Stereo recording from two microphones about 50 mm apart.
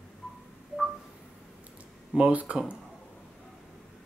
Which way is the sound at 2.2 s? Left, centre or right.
Right.